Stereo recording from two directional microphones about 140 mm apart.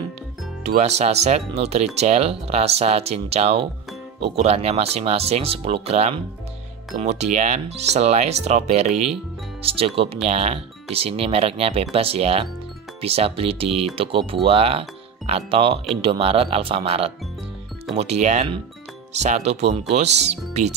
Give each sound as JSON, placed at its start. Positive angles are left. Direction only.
{"t": 0.7, "sound": "speech", "side_deg": -50}